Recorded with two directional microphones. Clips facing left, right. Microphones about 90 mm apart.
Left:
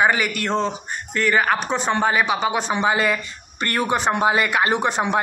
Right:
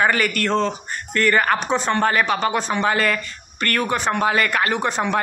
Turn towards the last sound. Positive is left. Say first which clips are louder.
# left 1 dB
turn(degrees=20)  # may be behind; listen again after turning